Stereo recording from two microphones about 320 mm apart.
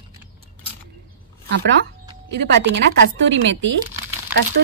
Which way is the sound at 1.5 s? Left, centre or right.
Right.